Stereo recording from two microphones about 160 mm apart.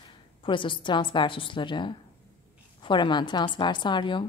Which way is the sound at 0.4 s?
30° left (ahead or behind).